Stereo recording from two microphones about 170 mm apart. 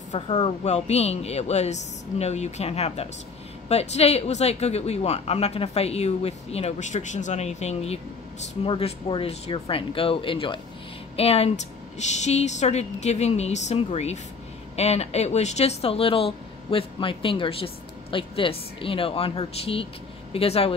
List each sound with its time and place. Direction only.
0.1 s speech: 40° left (ahead or behind)